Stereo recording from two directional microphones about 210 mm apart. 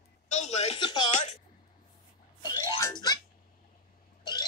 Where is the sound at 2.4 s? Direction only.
15° left (ahead or behind).